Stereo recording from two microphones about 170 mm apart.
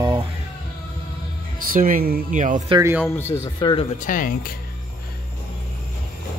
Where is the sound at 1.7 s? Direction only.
55° right (ahead or behind).